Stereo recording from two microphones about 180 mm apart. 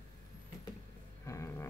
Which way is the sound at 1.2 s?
15° left (ahead or behind).